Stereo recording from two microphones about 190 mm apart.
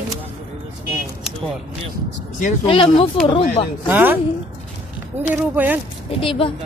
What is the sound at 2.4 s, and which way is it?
Speech, 30° left (ahead or behind).